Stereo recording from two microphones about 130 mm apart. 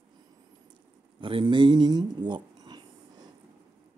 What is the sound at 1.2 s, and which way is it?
Speech, 40° right (ahead or behind).